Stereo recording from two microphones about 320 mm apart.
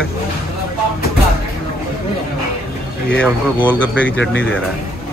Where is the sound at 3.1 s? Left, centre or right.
Centre.